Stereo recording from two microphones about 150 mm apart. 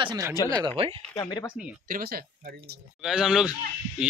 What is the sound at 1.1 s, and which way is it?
Speech, 25° left (ahead or behind).